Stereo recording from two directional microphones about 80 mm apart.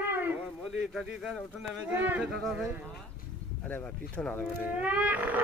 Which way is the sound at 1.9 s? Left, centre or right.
Right.